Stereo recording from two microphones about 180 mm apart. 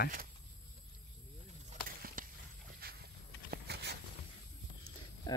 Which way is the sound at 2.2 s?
50° right (ahead or behind).